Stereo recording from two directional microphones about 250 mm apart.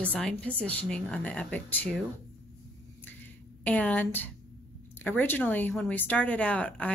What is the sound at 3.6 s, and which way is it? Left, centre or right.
Speech, centre.